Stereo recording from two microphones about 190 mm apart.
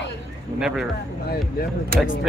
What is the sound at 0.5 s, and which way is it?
Speech, 5° right (ahead or behind).